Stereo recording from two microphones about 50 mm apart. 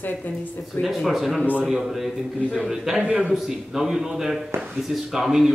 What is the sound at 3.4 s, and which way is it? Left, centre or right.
Speech, centre.